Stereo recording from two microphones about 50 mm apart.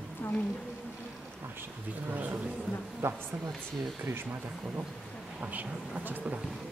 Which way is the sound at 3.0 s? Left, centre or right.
Right.